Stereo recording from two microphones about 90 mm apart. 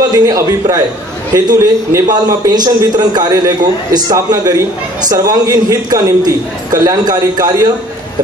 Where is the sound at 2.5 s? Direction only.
45° right (ahead or behind).